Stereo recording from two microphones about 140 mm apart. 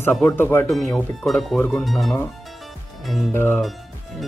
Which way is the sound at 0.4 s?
15° left (ahead or behind).